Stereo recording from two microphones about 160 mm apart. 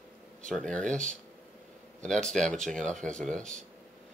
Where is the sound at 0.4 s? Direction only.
5° left (ahead or behind).